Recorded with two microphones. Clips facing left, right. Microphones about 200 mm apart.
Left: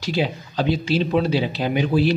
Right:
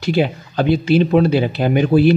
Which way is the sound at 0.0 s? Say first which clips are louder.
Right 6 dB; 55° right (ahead or behind).